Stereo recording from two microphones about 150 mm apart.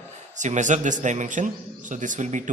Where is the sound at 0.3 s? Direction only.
55° right (ahead or behind).